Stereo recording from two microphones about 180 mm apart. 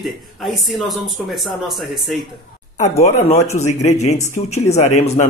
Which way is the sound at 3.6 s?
40° left (ahead or behind).